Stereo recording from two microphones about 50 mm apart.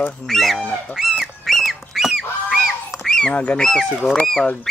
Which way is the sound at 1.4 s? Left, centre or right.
Centre.